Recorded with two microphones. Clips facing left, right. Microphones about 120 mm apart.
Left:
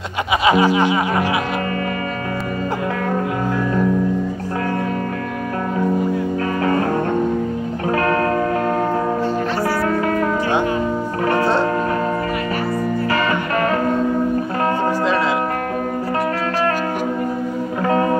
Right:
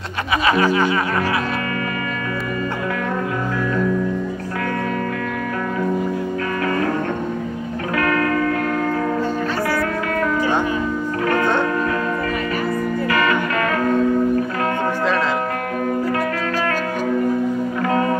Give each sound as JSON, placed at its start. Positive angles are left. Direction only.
{"t": 0.5, "sound": "music", "side_deg": 20}
{"t": 6.6, "sound": "music", "side_deg": 30}
{"t": 7.9, "sound": "music", "side_deg": 30}
{"t": 11.2, "sound": "music", "side_deg": 30}
{"t": 13.1, "sound": "music", "side_deg": 30}